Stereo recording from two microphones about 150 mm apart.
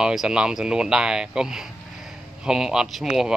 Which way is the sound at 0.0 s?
5° right (ahead or behind).